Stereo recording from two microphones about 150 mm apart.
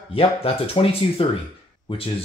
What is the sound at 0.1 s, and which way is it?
Speech, 40° left (ahead or behind).